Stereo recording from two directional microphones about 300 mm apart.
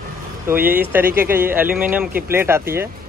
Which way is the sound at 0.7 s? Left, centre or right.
Centre.